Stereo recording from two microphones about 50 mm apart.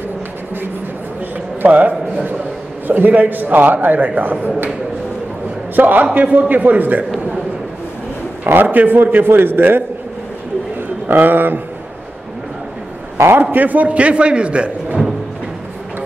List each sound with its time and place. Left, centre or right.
1.6 s a man's voice: right
5.8 s a man's voice: right
8.6 s a man's voice: right
11.1 s a man's voice: right
13.4 s a man's voice: right